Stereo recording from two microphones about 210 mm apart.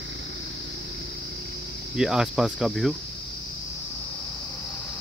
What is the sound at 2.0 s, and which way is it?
Speech, centre (ahead or behind).